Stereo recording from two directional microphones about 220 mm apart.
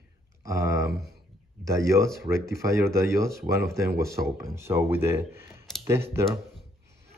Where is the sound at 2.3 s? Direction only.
15° right (ahead or behind).